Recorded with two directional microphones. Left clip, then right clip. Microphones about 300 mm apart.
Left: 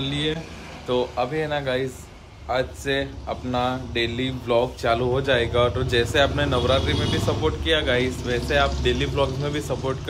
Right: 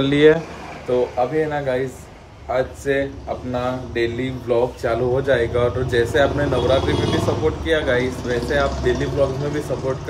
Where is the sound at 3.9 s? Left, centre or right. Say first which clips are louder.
Right 3 dB; left.